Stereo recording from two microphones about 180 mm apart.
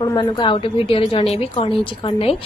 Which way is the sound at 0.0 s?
25° left (ahead or behind).